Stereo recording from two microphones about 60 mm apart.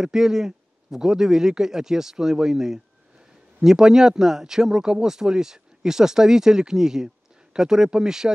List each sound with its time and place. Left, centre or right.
0.0 s speech: centre